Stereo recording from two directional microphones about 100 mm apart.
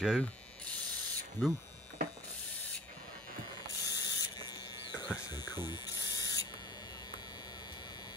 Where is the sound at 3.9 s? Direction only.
40° left (ahead or behind).